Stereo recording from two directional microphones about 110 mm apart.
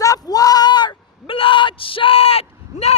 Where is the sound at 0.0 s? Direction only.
35° left (ahead or behind).